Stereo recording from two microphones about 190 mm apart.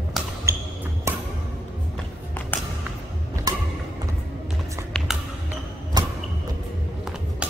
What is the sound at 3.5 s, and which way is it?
Music, 20° right (ahead or behind).